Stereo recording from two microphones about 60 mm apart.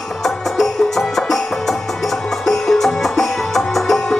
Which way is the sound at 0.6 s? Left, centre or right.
Centre.